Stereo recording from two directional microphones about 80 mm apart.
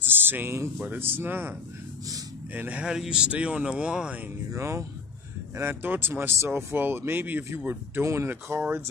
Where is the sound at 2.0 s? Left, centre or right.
Right.